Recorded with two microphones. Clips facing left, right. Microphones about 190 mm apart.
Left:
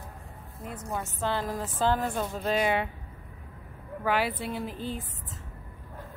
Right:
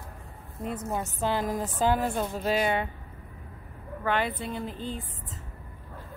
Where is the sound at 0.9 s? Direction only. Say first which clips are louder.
Right 1 dB; 15° right (ahead or behind); by 2.9 s centre (ahead or behind).